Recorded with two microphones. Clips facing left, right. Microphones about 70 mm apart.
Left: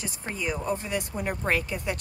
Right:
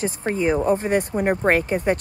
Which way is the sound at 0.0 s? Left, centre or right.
Right.